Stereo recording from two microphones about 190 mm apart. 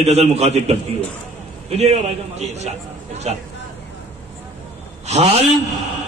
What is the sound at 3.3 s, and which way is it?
Speech, 35° right (ahead or behind).